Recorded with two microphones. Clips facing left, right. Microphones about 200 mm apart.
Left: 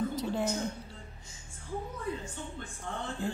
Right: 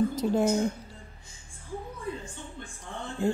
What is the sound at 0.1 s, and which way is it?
Speech, 45° right (ahead or behind).